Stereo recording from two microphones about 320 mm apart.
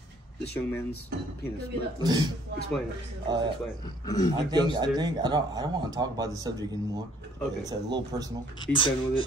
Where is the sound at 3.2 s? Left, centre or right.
Centre.